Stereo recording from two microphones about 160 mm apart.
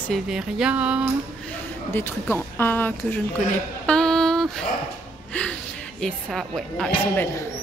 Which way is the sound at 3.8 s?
5° left (ahead or behind).